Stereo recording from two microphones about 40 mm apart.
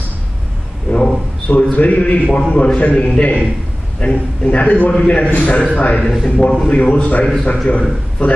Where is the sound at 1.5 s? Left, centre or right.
Left.